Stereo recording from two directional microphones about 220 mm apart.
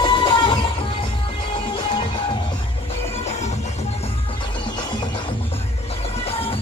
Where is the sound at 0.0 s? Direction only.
20° left (ahead or behind).